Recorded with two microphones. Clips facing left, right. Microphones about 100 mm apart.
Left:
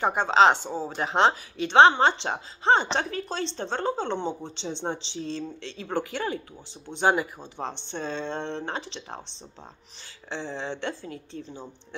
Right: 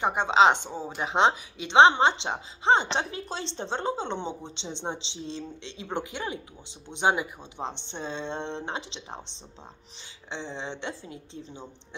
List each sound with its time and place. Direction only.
0.0 s speech: 15° right (ahead or behind)
7.5 s speech: 20° right (ahead or behind)